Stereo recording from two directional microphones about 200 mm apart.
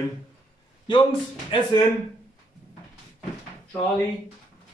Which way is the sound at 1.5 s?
25° left (ahead or behind).